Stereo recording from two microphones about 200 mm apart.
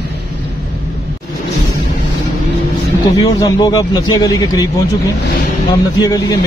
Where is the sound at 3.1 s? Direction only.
20° left (ahead or behind).